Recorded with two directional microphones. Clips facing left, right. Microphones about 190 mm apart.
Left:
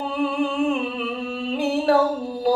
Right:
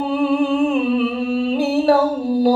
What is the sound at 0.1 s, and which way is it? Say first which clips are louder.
Humming: right 6 dB; 35° right (ahead or behind).